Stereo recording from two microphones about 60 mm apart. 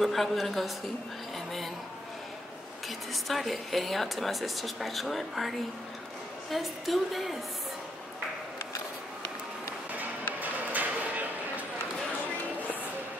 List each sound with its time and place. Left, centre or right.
0.0 s speech: centre
3.1 s speech: centre
6.5 s speech: centre
10.4 s a sound: right